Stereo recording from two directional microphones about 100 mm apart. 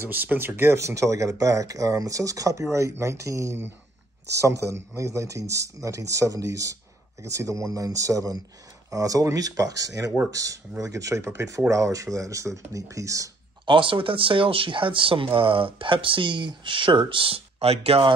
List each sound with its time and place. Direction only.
0.0 s speech: 20° right (ahead or behind)
13.7 s speech: 60° right (ahead or behind); by 18.0 s 85° right